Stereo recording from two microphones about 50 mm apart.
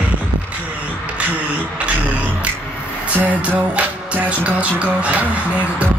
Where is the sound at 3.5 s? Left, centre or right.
Right.